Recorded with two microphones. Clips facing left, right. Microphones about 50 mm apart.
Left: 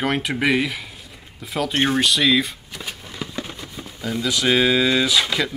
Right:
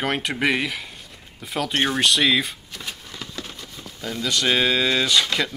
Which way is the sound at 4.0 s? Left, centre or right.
Centre.